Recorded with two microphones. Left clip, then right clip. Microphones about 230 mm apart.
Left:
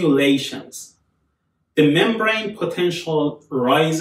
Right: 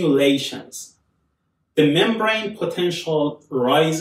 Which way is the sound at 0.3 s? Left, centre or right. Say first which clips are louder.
Left 1 dB; centre.